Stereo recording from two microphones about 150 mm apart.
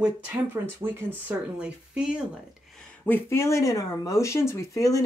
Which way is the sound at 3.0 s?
15° left (ahead or behind).